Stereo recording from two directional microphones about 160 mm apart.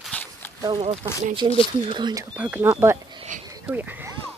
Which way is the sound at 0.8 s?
45° right (ahead or behind).